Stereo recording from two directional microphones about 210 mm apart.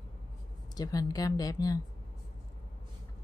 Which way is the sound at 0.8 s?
15° left (ahead or behind).